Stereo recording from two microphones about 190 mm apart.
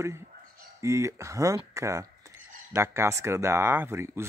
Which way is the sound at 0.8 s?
15° right (ahead or behind).